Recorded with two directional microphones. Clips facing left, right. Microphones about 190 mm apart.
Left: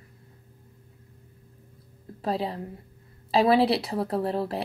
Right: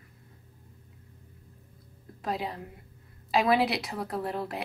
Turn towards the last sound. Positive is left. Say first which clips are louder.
# left 5 dB
turn(degrees=35)  # may be behind; listen again after turning